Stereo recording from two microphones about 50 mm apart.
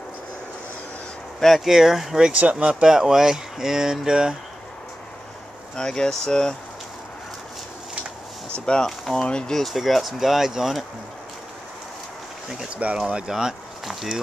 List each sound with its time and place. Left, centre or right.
1.4 s speech: centre
1.7 s speech: centre
2.3 s speech: right
5.8 s speech: centre
8.5 s speech: centre
9.7 s speech: centre
12.4 s speech: centre